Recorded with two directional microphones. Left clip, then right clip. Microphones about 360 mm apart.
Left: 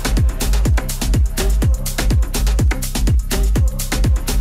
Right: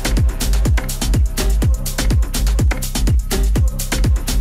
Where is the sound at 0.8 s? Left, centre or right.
Centre.